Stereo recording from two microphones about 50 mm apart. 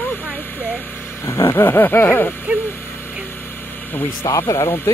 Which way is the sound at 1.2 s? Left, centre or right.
Left.